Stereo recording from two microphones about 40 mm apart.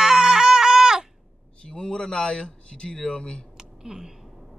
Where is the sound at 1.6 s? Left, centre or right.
Left.